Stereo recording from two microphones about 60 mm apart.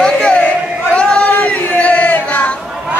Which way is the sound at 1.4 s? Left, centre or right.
Left.